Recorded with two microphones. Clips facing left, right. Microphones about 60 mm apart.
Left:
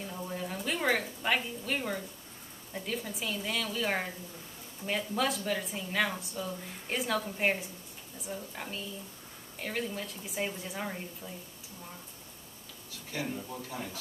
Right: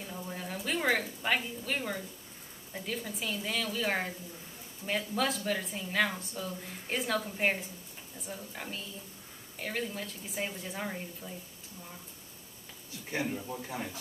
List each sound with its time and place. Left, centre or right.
0.3 s a woman's voice: centre
13.1 s speech: right